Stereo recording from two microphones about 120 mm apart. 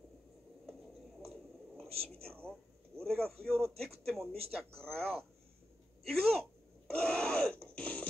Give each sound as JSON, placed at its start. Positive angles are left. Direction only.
{"t": 1.2, "sound": "a sound", "side_deg": 5}
{"t": 1.9, "sound": "speech", "side_deg": -55}
{"t": 3.0, "sound": "speech", "side_deg": 5}
{"t": 7.0, "sound": "wheeze", "side_deg": 5}